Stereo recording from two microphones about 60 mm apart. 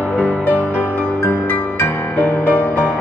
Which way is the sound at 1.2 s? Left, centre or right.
Left.